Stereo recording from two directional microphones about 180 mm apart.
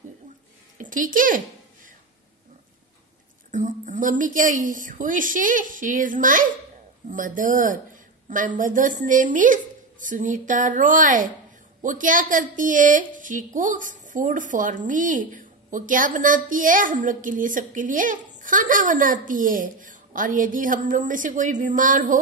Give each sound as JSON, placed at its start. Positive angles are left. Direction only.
{"t": 0.7, "sound": "a woman's voice", "side_deg": -45}
{"t": 3.5, "sound": "a woman's voice", "side_deg": -45}